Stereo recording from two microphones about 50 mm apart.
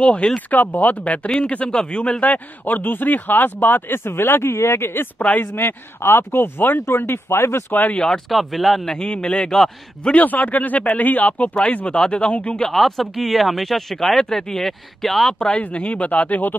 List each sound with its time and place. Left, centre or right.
0.0 s speech: centre
0.5 s speech: left
2.2 s speech: left
7.9 s a man's voice: centre
8.3 s speech: centre
8.9 s a man's voice: centre
10.2 s speech: left
12.7 s speech: centre
15.3 s speech: centre; by 16.5 s left